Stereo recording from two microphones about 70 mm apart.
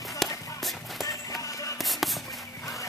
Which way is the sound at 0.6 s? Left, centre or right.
Centre.